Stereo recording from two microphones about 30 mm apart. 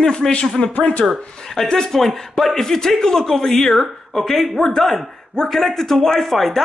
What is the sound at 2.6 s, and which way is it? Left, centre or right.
Speech, centre.